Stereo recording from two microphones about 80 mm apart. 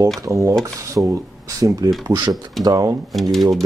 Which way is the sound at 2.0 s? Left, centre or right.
Right.